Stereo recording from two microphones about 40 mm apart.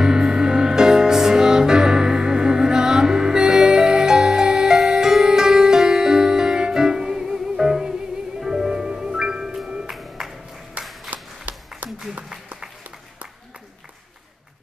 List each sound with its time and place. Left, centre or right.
0.0 s music: centre
9.8 s music: centre
10.8 s a sound: right